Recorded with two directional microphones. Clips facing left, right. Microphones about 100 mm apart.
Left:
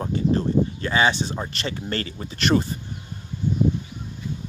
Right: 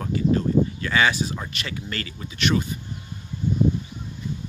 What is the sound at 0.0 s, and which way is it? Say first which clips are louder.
Speech: even; 30° left (ahead or behind).